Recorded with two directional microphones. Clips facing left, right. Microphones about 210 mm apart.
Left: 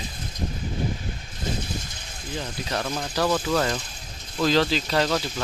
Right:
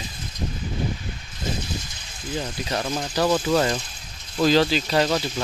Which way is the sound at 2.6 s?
10° right (ahead or behind).